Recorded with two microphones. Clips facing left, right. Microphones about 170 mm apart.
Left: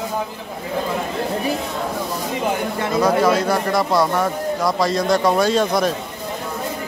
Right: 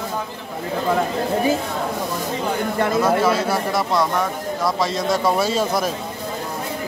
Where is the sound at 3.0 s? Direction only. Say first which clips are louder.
Left 4 dB; 5° right (ahead or behind).